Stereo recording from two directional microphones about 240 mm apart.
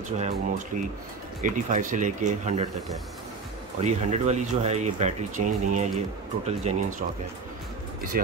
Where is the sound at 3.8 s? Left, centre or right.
Right.